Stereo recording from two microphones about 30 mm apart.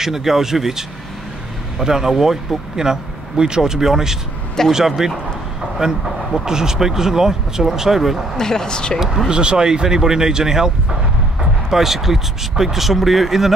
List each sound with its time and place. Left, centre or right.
0.0 s speech: centre
1.9 s speech: centre
8.4 s speech: centre
9.3 s speech: right
11.7 s speech: centre